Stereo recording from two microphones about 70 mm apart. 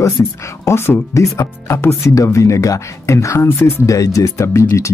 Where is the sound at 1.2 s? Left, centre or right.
Left.